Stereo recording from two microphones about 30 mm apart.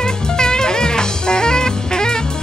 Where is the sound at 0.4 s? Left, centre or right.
Left.